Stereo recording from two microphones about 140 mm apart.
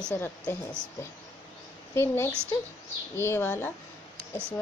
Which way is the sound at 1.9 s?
20° left (ahead or behind).